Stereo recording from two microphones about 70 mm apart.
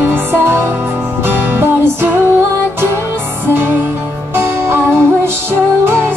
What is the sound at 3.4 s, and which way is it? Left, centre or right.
Music, right.